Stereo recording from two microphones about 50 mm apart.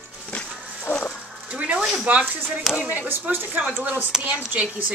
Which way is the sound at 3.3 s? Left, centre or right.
Right.